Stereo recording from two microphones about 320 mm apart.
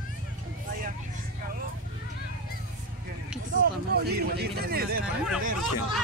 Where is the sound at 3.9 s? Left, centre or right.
Right.